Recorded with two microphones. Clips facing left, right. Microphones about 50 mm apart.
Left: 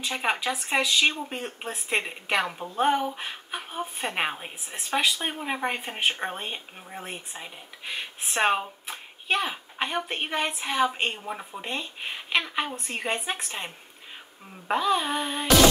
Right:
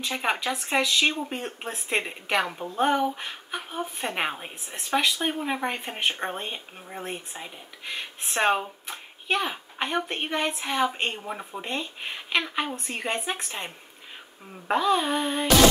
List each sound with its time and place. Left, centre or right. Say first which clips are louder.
0.0 s a woman's voice: even; centre